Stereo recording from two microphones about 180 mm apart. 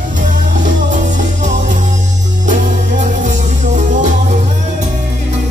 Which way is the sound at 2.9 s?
40° right (ahead or behind).